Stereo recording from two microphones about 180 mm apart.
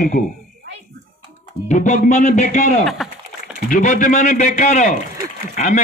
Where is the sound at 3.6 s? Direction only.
45° left (ahead or behind).